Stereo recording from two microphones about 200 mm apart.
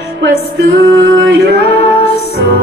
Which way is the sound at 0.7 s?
50° right (ahead or behind).